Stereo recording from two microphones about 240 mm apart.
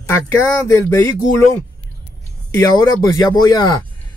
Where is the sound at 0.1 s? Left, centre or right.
Centre.